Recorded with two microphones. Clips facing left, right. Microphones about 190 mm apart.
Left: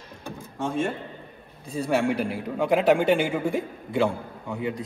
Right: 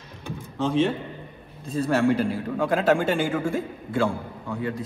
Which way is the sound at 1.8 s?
15° left (ahead or behind).